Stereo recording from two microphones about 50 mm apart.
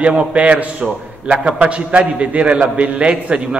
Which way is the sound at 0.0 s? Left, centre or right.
Right.